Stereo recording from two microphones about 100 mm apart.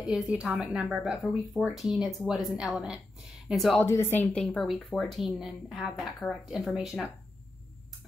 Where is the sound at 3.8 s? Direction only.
25° left (ahead or behind).